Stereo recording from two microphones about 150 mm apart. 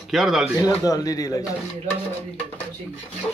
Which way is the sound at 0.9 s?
25° left (ahead or behind).